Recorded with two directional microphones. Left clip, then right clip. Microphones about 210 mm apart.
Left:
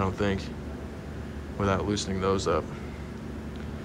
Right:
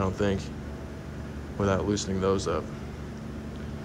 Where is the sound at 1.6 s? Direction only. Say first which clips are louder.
Right 1 dB; 15° right (ahead or behind).